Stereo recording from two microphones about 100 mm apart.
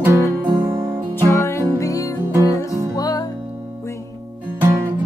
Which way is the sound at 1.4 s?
35° left (ahead or behind).